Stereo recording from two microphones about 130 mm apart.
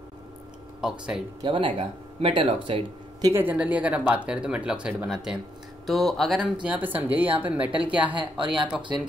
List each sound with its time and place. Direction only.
0.7 s speech: 5° right (ahead or behind)
1.4 s speech: 40° right (ahead or behind)
3.3 s speech: 20° right (ahead or behind)
8.1 s speech: 40° right (ahead or behind)